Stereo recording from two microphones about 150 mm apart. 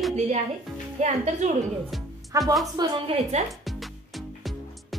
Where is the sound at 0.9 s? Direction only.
50° right (ahead or behind).